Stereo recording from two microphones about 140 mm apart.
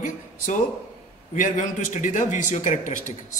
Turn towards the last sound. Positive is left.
turn(degrees=65)  # may be behind; listen again after turning